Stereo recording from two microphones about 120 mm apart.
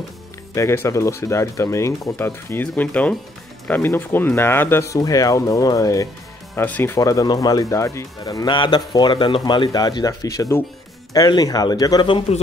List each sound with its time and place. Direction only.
0.6 s speech: 25° left (ahead or behind)
6.5 s speech: 15° left (ahead or behind); by 12.1 s 35° left (ahead or behind)
12.3 s speech: 60° left (ahead or behind)